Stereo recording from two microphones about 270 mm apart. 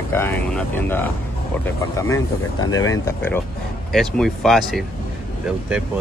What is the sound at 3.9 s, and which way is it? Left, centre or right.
Speech, centre.